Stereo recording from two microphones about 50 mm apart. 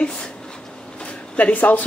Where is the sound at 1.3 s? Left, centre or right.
Left.